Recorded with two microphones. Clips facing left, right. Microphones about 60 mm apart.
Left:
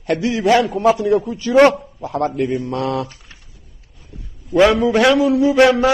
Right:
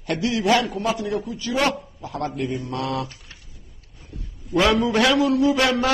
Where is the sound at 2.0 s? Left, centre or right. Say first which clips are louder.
Left 7 dB; left.